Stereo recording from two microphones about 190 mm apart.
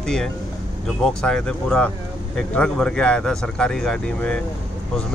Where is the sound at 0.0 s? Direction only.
5° left (ahead or behind).